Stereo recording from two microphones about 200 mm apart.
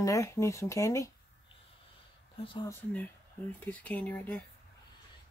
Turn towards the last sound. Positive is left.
turn(degrees=10)  # may be behind; listen again after turning